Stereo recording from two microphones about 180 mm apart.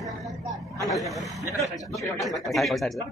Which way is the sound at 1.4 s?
20° left (ahead or behind).